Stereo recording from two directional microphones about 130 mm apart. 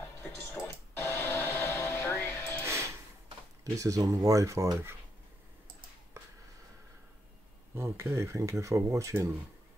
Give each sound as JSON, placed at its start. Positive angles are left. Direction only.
{"t": 0.2, "sound": "music", "side_deg": 15}
{"t": 3.6, "sound": "speech", "side_deg": -25}
{"t": 7.7, "sound": "speech", "side_deg": -20}